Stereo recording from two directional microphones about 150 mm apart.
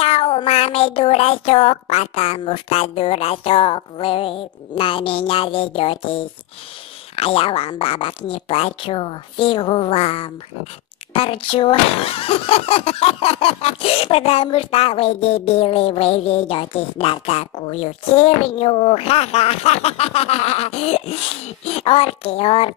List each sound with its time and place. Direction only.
0.0 s speech: 40° left (ahead or behind)
7.2 s speech: 40° left (ahead or behind)